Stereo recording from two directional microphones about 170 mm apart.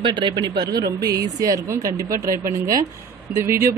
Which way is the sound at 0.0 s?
30° right (ahead or behind).